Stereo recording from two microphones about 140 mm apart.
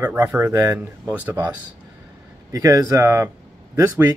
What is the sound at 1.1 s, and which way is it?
Speech, 10° right (ahead or behind).